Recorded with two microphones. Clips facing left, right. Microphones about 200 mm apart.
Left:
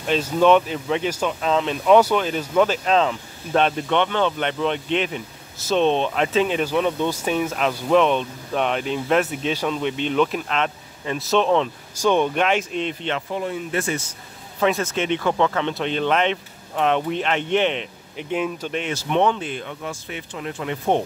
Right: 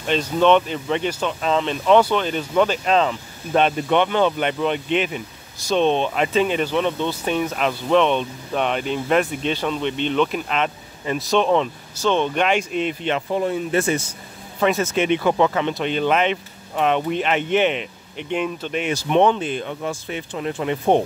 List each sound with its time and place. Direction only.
0.0 s speech: 5° left (ahead or behind)
11.9 s speech: 10° left (ahead or behind)
12.4 s speech: centre (ahead or behind)
13.3 s speech: 30° right (ahead or behind)
14.6 s speech: 5° right (ahead or behind)
18.8 s speech: 15° right (ahead or behind)